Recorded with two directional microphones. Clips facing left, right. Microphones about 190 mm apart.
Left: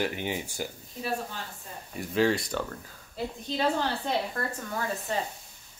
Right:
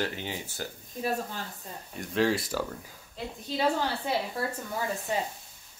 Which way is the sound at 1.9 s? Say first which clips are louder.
Left 1 dB; centre (ahead or behind).